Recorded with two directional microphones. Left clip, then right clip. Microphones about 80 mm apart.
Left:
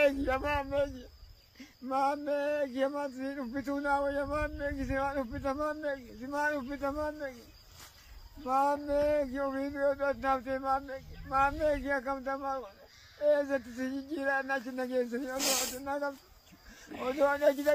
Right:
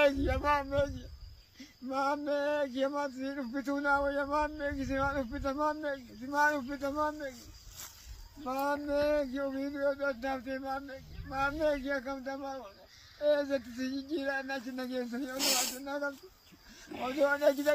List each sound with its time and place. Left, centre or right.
0.0 s speech: left
4.6 s speech: left
4.8 s speech: left
6.7 s speech: left
8.5 s speech: left